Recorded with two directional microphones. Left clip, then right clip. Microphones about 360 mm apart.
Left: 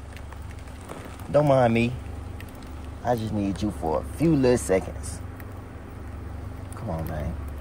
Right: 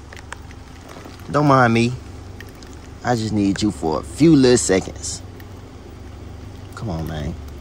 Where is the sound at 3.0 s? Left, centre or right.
Centre.